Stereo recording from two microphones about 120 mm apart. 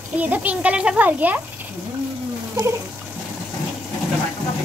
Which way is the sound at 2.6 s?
35° right (ahead or behind).